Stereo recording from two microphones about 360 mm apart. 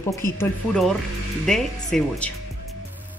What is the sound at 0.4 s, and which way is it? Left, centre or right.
A woman's voice, centre.